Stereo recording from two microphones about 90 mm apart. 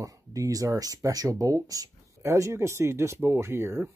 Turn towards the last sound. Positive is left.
turn(degrees=-30)  # may be behind; listen again after turning